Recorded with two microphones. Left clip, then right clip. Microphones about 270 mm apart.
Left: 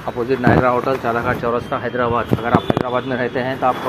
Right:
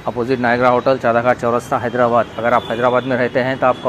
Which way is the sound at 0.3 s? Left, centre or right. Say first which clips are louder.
Right 1 dB; right.